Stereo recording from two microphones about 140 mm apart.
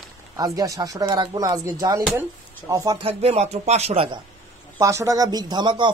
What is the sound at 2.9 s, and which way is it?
Speech, 45° right (ahead or behind).